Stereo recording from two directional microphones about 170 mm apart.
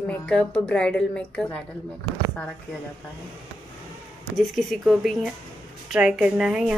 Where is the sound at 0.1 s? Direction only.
5° left (ahead or behind).